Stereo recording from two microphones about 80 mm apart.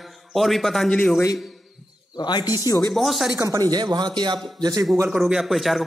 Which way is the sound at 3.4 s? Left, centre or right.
Right.